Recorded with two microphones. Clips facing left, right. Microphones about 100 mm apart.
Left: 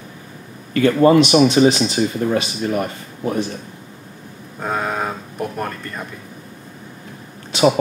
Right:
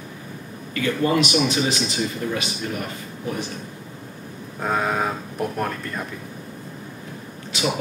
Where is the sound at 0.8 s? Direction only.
45° left (ahead or behind).